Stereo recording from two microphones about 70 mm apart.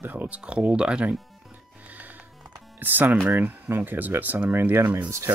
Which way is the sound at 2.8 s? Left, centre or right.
Right.